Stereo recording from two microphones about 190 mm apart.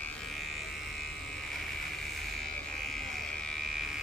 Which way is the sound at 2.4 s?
Centre (ahead or behind).